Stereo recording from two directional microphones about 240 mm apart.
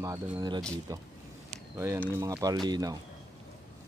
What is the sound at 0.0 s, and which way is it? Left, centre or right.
Speech, centre.